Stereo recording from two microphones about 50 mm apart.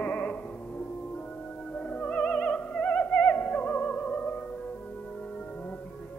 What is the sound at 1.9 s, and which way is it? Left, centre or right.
Music, left.